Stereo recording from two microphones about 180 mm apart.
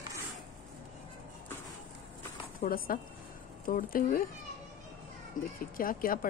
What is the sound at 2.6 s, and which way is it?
Speech, 50° left (ahead or behind).